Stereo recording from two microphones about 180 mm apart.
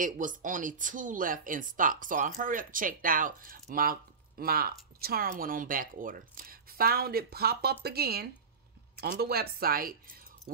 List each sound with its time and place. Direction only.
0.0 s speech: 45° right (ahead or behind)